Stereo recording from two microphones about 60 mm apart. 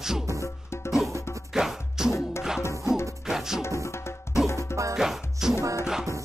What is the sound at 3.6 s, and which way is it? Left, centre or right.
Music, left.